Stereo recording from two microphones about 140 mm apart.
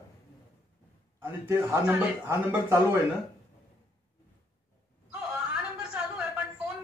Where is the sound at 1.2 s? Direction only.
15° right (ahead or behind).